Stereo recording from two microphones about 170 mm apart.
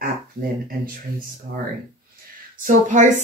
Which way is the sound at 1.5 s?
80° right.